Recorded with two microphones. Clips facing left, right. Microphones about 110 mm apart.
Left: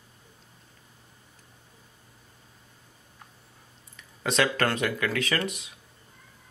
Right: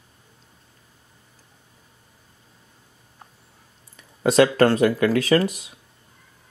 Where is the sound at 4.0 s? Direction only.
35° right (ahead or behind).